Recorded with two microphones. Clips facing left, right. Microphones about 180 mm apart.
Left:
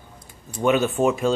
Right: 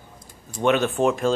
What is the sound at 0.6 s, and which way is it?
Speech, 5° left (ahead or behind).